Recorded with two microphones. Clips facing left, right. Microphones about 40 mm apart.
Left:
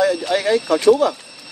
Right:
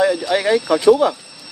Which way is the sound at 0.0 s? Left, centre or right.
Right.